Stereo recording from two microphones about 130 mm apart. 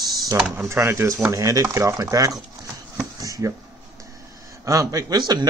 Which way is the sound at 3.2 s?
25° right (ahead or behind).